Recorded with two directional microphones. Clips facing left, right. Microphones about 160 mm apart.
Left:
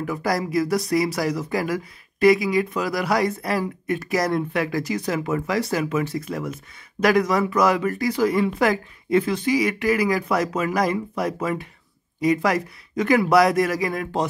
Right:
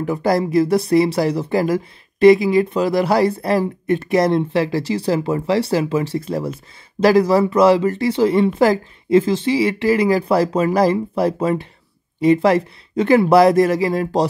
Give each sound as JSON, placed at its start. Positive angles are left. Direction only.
{"t": 0.0, "sound": "speech", "side_deg": -30}